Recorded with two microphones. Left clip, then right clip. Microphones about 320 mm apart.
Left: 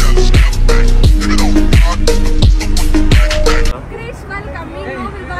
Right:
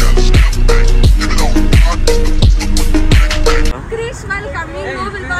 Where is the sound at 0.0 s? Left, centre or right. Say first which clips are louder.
Left 1 dB; centre.